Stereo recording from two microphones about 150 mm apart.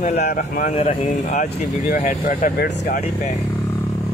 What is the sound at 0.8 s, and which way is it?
Speech, 55° left (ahead or behind).